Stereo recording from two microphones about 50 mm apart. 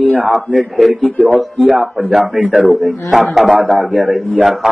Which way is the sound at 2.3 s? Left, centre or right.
Right.